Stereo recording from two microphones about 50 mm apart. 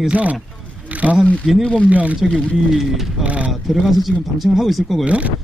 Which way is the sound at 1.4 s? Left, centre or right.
Centre.